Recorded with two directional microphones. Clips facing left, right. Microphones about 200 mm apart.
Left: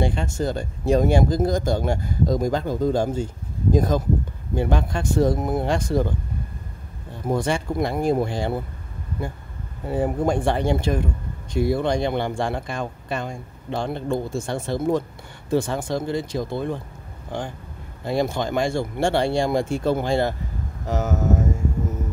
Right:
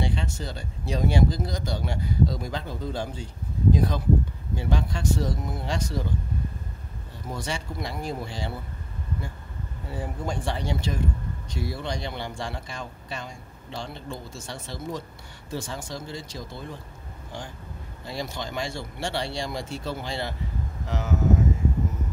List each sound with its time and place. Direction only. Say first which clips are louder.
0.0 s speech: left 7 dB; 50° left (ahead or behind)
7.2 s speech: left 10 dB; 50° left (ahead or behind)
9.8 s speech: left 11 dB; 55° left (ahead or behind)
18.0 s speech: left 10 dB; 55° left (ahead or behind)